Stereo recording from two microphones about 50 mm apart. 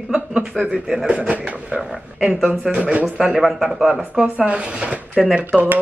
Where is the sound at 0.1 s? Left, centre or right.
Centre.